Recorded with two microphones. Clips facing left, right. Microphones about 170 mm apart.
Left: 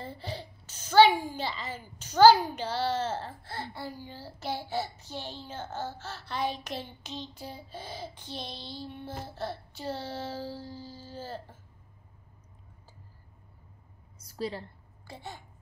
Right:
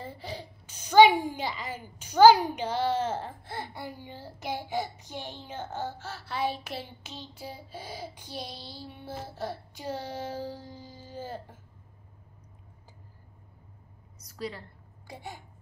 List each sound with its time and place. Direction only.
0.0 s a child's voice: 10° right (ahead or behind)
14.2 s a sound: 30° left (ahead or behind)
15.0 s a child's voice: 15° right (ahead or behind)